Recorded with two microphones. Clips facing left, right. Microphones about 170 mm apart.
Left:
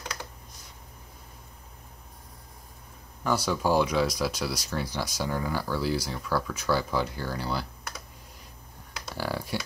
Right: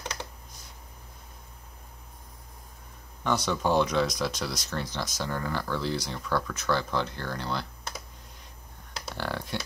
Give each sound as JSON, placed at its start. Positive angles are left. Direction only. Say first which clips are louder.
{"t": 0.0, "sound": "computer keyboard", "louder": "right 1 dB", "side_deg": -25}
{"t": 3.3, "sound": "speech", "louder": "left 1 dB", "side_deg": 5}
{"t": 9.1, "sound": "computer keyboard", "louder": "left 2 dB", "side_deg": 5}